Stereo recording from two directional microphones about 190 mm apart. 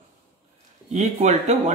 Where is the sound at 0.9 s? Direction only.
35° right (ahead or behind).